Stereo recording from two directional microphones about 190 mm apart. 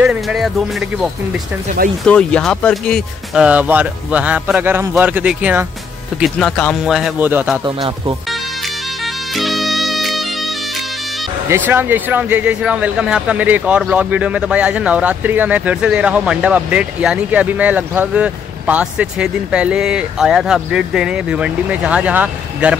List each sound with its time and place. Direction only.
0.0 s music: 5° right (ahead or behind)
2.0 s a man's voice: 5° left (ahead or behind); by 7.6 s 10° right (ahead or behind)
7.6 s speech: 25° right (ahead or behind)
9.0 s bagpipes: centre (ahead or behind)
11.4 s speech: 10° right (ahead or behind)